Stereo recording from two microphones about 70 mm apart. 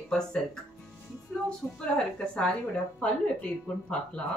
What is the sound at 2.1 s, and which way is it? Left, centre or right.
Speech, centre.